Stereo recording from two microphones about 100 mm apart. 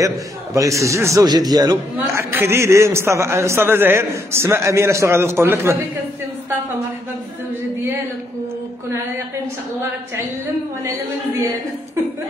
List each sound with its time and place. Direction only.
0.6 s a man's voice: 30° right (ahead or behind)
1.2 s a man's voice: 40° right (ahead or behind)
2.1 s a man's voice: 25° right (ahead or behind)
10.9 s a man's voice: 25° right (ahead or behind)